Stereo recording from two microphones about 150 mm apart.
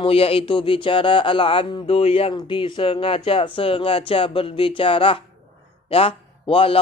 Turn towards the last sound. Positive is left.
turn(degrees=40)  # may be behind; listen again after turning